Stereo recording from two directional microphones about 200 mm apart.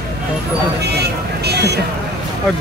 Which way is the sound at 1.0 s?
55° right (ahead or behind).